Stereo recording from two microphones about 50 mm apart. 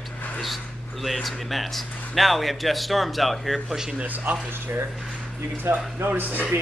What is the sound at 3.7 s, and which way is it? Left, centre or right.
Speech, centre.